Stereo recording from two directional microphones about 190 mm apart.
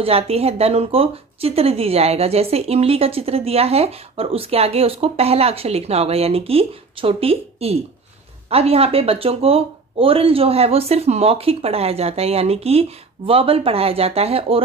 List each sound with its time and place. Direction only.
0.0 s speech: 30° right (ahead or behind)